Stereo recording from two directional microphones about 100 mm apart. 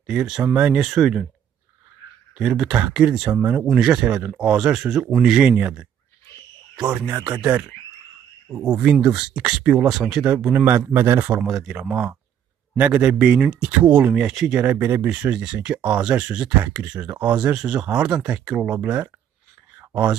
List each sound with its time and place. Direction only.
0.0 s speech: 5° right (ahead or behind)
2.3 s speech: 5° right (ahead or behind)
8.5 s speech: 35° right (ahead or behind)
8.8 s a man's voice: 10° right (ahead or behind)
11.4 s speech: centre (ahead or behind)
11.8 s a man's voice: 15° right (ahead or behind)
19.8 s a sound: 15° right (ahead or behind)